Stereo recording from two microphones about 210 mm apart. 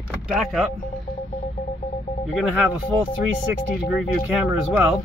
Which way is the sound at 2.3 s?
Centre (ahead or behind).